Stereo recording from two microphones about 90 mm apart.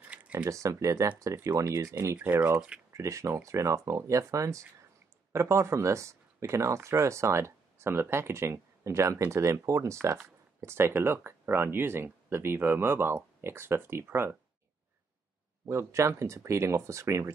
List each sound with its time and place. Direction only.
0.0 s a sound: 15° right (ahead or behind)
0.5 s speech: 35° right (ahead or behind)
15.6 s speech: 35° right (ahead or behind)